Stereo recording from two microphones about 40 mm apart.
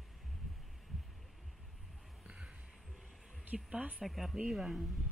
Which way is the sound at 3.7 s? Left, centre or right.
Right.